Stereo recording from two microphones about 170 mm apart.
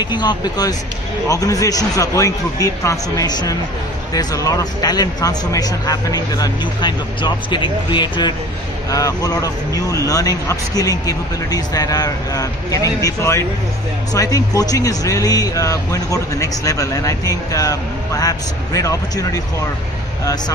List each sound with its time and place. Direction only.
0.0 s speech: 25° left (ahead or behind)